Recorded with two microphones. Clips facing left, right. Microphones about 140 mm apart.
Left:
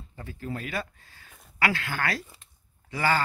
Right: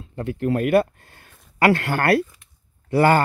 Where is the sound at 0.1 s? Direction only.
65° right (ahead or behind).